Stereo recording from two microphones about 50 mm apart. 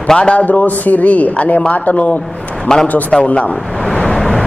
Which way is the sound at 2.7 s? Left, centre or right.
Centre.